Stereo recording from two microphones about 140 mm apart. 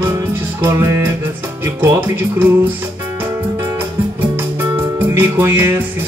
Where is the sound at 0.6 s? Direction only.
15° right (ahead or behind).